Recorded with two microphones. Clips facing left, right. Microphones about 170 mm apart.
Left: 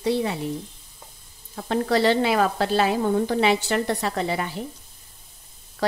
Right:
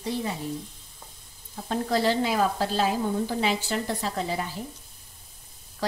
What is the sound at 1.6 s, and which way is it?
A woman's voice, 75° left (ahead or behind).